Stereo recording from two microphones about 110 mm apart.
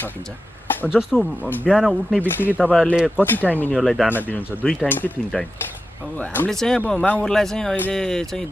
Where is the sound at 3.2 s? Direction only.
15° left (ahead or behind).